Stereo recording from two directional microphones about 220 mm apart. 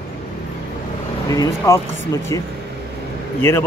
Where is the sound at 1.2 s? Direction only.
15° left (ahead or behind).